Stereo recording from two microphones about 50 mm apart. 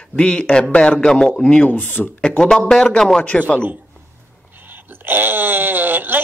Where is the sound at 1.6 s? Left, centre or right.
Left.